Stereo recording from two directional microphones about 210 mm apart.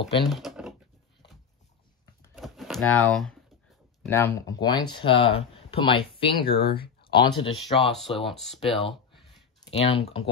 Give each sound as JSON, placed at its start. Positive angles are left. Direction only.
{"t": 0.2, "sound": "typing", "side_deg": 0}
{"t": 2.3, "sound": "typewriter", "side_deg": 0}
{"t": 4.0, "sound": "speech", "side_deg": 10}
{"t": 7.9, "sound": "speech", "side_deg": 0}
{"t": 8.7, "sound": "a sound", "side_deg": 0}
{"t": 9.7, "sound": "speech", "side_deg": 30}